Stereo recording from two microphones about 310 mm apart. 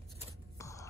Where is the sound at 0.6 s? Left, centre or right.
Centre.